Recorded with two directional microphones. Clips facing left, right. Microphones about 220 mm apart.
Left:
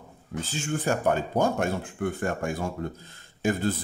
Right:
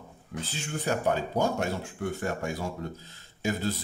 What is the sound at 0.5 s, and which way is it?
A man's voice, 45° left (ahead or behind).